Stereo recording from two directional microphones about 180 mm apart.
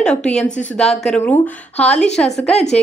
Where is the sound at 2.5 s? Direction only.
35° left (ahead or behind).